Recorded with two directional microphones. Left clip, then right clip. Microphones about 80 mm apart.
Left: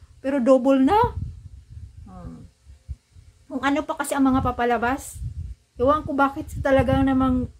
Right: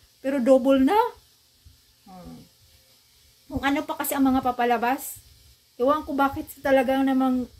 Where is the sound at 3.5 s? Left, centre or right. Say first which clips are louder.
Left 2 dB; left.